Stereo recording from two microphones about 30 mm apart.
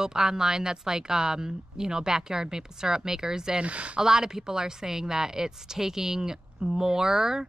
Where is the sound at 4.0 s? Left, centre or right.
Centre.